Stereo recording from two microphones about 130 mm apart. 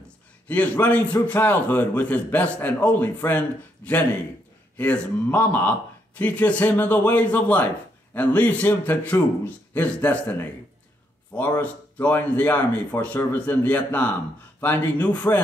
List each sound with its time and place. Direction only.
0.5 s a man's voice: 10° left (ahead or behind)